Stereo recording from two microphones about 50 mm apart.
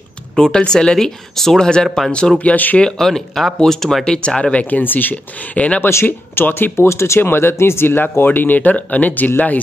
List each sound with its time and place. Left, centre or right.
0.4 s speech: centre; by 2.8 s left
3.0 s speech: centre; by 5.8 s left
6.0 s speech: left
7.2 s speech: left